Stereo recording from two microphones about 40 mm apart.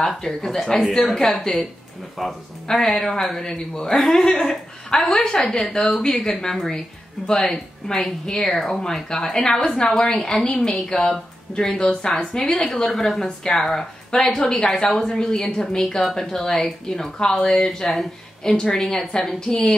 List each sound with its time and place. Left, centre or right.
0.2 s speech: centre
2.1 s speech: centre
9.3 s speech: centre
17.2 s speech: centre